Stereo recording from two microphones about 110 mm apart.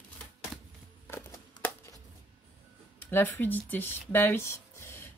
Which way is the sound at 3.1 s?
20° left (ahead or behind).